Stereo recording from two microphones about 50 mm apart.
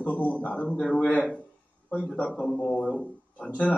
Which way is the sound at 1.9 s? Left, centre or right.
Left.